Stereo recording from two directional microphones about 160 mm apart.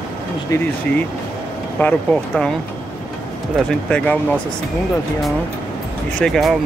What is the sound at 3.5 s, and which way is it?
Speech, 5° left (ahead or behind).